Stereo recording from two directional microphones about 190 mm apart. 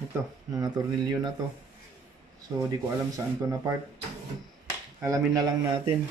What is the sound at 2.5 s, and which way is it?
Speech, 20° right (ahead or behind).